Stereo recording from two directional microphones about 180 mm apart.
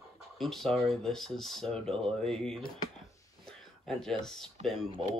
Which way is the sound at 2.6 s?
25° left (ahead or behind).